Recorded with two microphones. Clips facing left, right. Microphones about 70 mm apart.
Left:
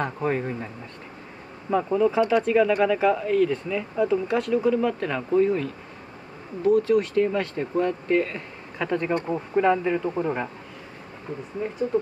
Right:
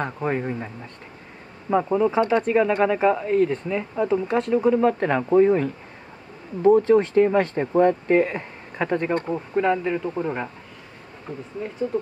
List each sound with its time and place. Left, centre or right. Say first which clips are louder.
0.0 s speech: even; centre
1.7 s speech: right 1 dB; centre
2.1 s speech: even; right
9.3 s speech: left 2 dB; centre
11.9 s speech: left 3 dB; left